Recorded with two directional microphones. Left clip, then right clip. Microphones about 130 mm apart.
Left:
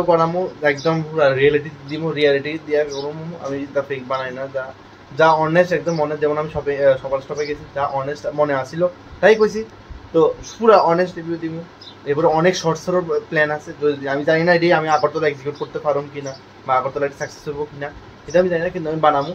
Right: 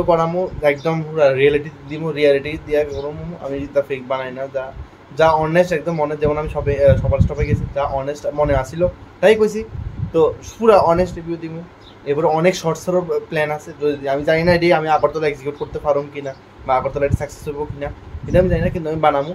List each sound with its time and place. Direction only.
0.1 s speech: 15° right (ahead or behind)
18.3 s speech: 15° right (ahead or behind)